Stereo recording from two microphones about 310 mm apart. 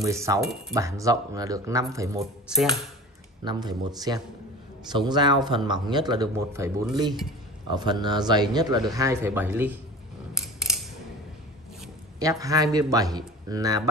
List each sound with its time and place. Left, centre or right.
0.0 s speech: centre
10.3 s scissors: centre
11.8 s speech: centre